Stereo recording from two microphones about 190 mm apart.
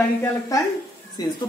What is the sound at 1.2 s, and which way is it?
Speech, 20° left (ahead or behind).